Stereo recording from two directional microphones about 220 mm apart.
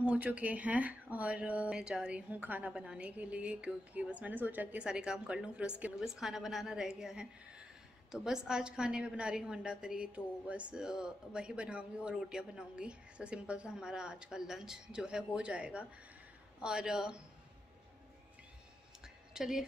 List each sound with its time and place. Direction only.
0.0 s a woman's voice: 5° right (ahead or behind)
19.3 s speech: centre (ahead or behind)